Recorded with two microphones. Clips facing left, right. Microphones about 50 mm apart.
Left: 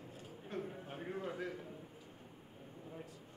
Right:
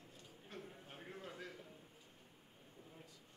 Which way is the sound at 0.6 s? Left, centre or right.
Centre.